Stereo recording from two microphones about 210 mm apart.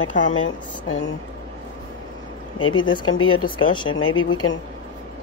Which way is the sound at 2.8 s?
20° left (ahead or behind).